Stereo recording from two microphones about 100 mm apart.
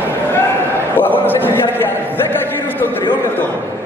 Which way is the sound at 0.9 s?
20° left (ahead or behind).